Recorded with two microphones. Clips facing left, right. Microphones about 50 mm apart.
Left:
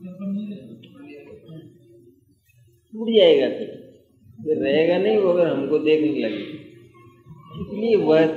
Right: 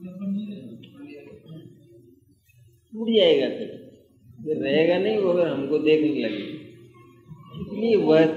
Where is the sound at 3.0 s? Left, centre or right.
Centre.